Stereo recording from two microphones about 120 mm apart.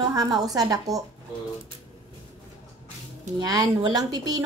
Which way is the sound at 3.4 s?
35° right (ahead or behind).